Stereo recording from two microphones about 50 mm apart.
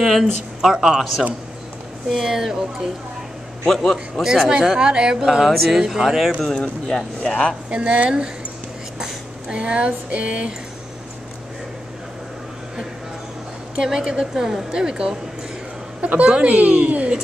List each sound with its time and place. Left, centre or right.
0.0 s a man's voice: centre
2.0 s a woman's voice: centre
3.6 s a man's voice: centre
4.7 s a woman's voice: centre
5.5 s a man's voice: centre
6.4 s speech: centre
7.7 s a woman's voice: right
9.5 s a woman's voice: right
13.8 s a woman's voice: centre
16.0 s a woman's voice: right